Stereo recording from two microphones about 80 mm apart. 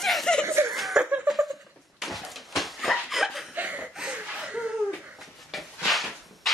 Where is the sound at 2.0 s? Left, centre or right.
Centre.